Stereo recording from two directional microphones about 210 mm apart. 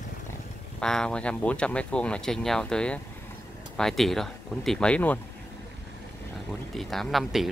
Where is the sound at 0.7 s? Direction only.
5° left (ahead or behind).